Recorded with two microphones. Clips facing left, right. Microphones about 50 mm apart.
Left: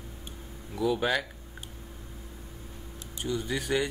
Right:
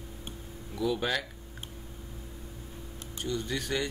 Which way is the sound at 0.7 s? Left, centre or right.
Centre.